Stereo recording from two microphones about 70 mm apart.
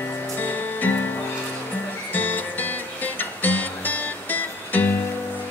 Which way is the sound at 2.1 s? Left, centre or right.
Left.